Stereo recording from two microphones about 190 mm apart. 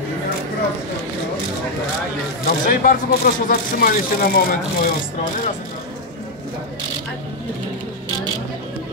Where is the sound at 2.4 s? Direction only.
45° left (ahead or behind).